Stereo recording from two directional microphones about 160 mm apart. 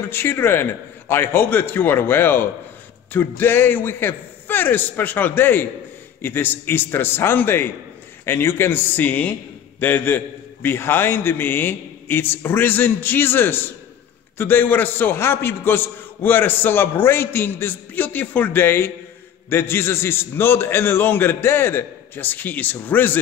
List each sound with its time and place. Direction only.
0.1 s a man's voice: 15° left (ahead or behind)